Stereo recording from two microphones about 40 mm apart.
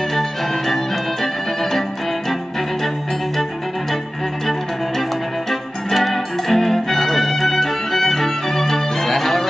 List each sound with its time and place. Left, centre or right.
0.1 s music: centre
5.5 s music: centre